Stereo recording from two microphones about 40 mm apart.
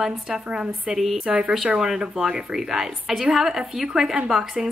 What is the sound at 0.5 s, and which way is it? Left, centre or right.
Speech, centre.